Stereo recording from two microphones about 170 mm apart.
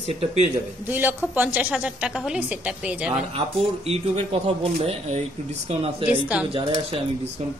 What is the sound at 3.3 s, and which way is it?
Speech, 35° right (ahead or behind).